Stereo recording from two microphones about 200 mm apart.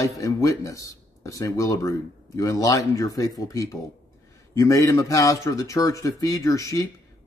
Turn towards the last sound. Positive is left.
turn(degrees=15)  # may be behind; listen again after turning